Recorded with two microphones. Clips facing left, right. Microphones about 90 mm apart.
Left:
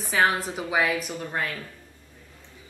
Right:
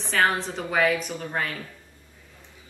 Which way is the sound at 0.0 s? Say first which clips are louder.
Even; 5° left (ahead or behind).